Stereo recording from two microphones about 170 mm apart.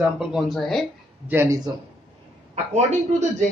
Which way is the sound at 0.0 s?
5° right (ahead or behind).